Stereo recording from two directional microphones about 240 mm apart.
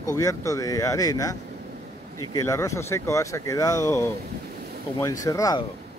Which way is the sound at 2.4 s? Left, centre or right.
Centre.